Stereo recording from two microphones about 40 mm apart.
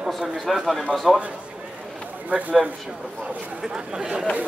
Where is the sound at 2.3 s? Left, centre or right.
Right.